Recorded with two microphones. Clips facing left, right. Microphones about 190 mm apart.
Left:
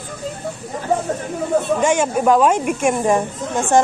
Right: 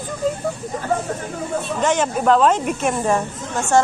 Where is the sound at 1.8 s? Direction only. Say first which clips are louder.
Left 2 dB; 10° left (ahead or behind).